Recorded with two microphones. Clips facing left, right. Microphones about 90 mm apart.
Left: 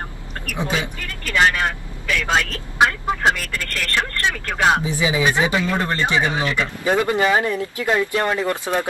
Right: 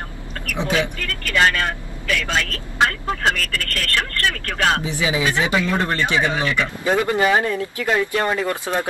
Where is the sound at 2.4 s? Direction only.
20° left (ahead or behind).